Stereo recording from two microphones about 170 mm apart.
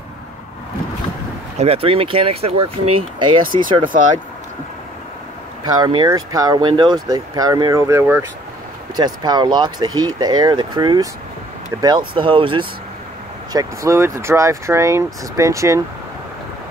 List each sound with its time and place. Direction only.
1.6 s speech: 35° right (ahead or behind)
3.5 s speech: 55° right (ahead or behind)
5.6 s speech: 25° right (ahead or behind)
12.1 s speech: 30° right (ahead or behind)
13.5 s speech: 20° right (ahead or behind)